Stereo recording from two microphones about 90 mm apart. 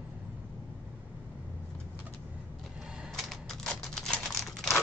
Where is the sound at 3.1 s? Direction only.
5° left (ahead or behind).